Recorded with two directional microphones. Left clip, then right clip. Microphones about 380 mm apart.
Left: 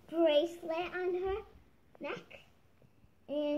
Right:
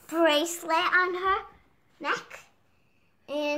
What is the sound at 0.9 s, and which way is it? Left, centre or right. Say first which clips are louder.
Speech: right 11 dB; right.